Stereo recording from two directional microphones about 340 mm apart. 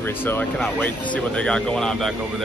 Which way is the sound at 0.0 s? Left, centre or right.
Centre.